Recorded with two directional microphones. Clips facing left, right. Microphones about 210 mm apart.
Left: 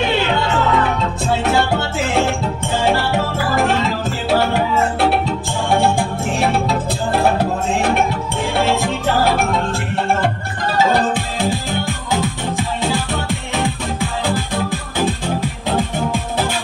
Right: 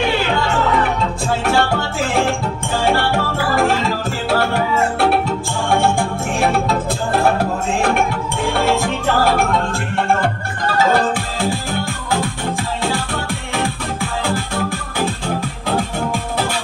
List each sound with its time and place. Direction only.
1.4 s music: 20° left (ahead or behind)
5.7 s organ: 20° left (ahead or behind)
8.7 s music: 20° left (ahead or behind)
10.9 s music: 20° left (ahead or behind)